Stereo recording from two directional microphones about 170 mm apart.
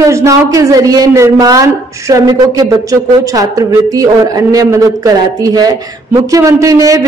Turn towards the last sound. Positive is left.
turn(degrees=-20)  # may be behind; listen again after turning